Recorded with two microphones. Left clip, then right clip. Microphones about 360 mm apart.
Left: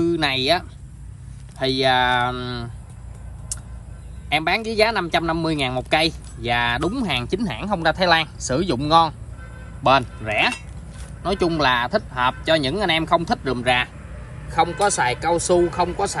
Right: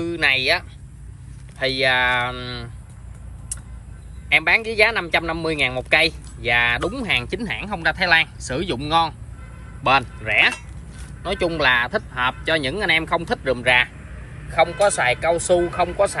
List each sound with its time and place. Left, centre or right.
0.0 s speech: centre
1.6 s speech: centre
4.3 s speech: centre
14.9 s speech: centre